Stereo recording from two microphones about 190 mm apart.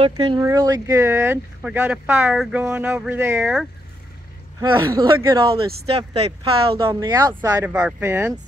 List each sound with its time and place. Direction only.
0.1 s speech: 20° right (ahead or behind); by 3.6 s 5° right (ahead or behind)
4.6 s speech: 15° right (ahead or behind)
5.9 s speech: 30° right (ahead or behind); by 8.4 s 15° right (ahead or behind)